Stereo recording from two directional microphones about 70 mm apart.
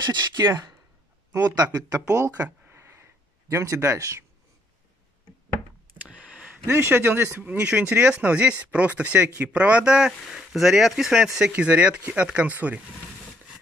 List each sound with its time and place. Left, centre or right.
0.0 s speech: right
1.3 s speech: right
2.0 s speech: right
2.7 s a sound: right
6.0 s a sound: centre
6.6 s a man's voice: right
7.6 s speech: centre
11.5 s speech: centre